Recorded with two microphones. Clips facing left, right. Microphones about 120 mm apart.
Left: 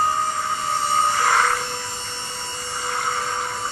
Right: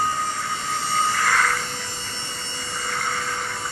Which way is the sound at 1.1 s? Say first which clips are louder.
Left 3 dB; 30° left (ahead or behind).